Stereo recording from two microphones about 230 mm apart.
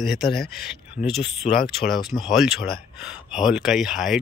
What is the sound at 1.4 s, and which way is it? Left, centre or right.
Speech, left.